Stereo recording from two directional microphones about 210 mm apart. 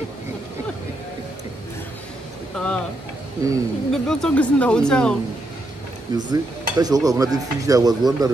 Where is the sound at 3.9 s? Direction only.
5° left (ahead or behind).